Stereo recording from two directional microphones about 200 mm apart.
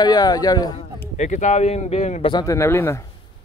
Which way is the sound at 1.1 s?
35° left (ahead or behind).